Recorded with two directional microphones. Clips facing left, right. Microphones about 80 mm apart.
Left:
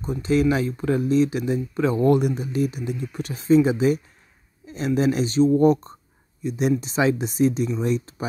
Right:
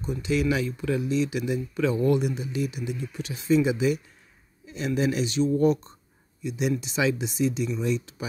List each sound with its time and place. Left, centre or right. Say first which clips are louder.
0.0 s speech: left 5 dB; left